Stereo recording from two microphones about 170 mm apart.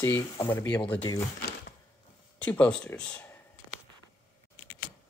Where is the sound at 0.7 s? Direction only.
30° left (ahead or behind).